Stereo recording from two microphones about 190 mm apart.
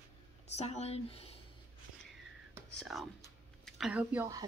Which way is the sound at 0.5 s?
35° left (ahead or behind).